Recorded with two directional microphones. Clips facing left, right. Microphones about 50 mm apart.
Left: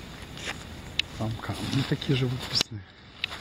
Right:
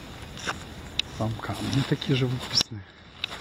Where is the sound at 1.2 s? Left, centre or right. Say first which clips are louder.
Right 2 dB; centre.